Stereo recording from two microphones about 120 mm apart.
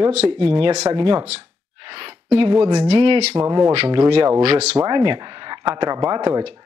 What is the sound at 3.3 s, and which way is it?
Speech, 25° right (ahead or behind).